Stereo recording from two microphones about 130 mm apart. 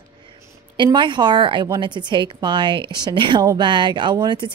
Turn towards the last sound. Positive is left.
turn(degrees=-35)  # may be behind; listen again after turning